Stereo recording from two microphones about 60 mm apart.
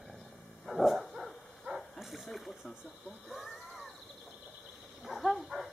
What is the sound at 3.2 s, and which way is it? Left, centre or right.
Wild animals, centre.